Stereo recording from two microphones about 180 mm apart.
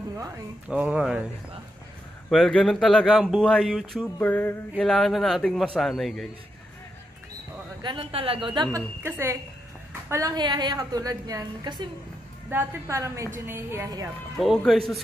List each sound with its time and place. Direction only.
0.7 s a woman's voice: 5° right (ahead or behind)
2.2 s speech: 5° left (ahead or behind)
7.8 s a woman's voice: 30° right (ahead or behind)
8.7 s a woman's voice: 15° right (ahead or behind)
12.4 s a woman's voice: 10° right (ahead or behind)
14.4 s speech: centre (ahead or behind)